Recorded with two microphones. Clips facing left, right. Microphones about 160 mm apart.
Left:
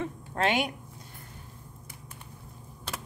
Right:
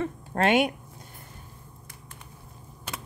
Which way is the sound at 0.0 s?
55° right (ahead or behind).